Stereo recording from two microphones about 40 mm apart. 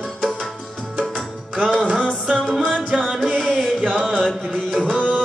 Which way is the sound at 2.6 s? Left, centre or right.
Right.